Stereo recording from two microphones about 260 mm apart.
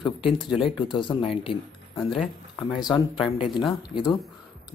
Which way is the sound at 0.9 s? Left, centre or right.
Centre.